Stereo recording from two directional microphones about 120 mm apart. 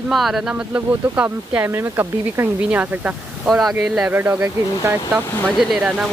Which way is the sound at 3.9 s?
15° right (ahead or behind).